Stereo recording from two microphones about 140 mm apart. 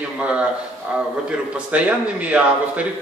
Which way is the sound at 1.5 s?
10° right (ahead or behind).